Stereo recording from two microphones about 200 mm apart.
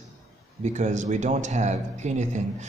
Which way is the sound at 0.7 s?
35° right (ahead or behind).